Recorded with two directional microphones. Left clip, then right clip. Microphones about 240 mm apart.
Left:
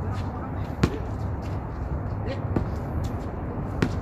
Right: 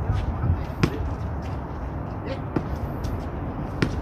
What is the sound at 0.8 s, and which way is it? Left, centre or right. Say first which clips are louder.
Basketball bounce: right 1 dB; centre.